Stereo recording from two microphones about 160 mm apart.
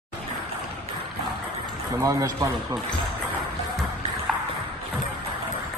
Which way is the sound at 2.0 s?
20° right (ahead or behind).